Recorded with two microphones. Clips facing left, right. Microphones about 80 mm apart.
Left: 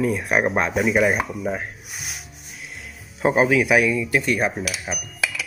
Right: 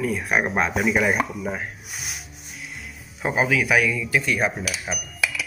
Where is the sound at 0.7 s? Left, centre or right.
Centre.